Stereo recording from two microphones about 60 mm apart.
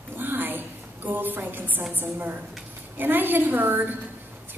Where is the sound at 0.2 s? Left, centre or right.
Right.